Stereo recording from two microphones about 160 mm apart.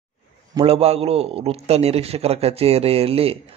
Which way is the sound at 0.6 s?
40° right (ahead or behind).